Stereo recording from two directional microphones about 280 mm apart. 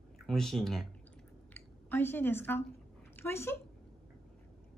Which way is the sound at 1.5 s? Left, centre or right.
Centre.